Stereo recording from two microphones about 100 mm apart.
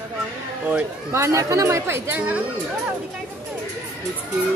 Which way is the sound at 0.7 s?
25° right (ahead or behind).